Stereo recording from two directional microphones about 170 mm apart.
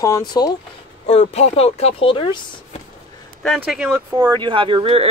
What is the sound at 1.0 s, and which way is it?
Speech, 40° left (ahead or behind).